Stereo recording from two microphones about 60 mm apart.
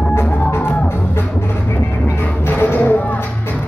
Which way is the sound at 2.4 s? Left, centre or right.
Left.